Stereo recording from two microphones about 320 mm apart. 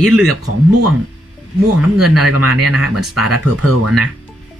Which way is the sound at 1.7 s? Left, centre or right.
Right.